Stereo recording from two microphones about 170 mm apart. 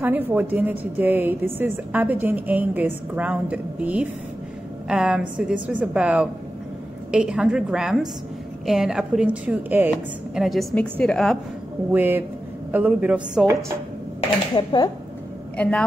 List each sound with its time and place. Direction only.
0.0 s a woman's voice: 10° right (ahead or behind)
11.9 s a woman's voice: 10° right (ahead or behind)
14.5 s speech: 30° left (ahead or behind)
15.5 s speech: 5° left (ahead or behind)